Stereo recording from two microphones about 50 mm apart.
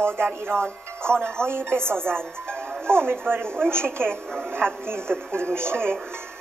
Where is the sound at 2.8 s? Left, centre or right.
Right.